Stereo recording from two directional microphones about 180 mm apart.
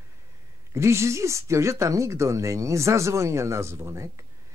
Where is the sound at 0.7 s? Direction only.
15° right (ahead or behind).